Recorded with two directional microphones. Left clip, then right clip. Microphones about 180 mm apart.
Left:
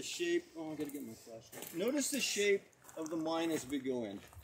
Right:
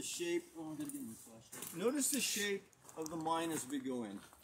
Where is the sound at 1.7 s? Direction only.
30° right (ahead or behind).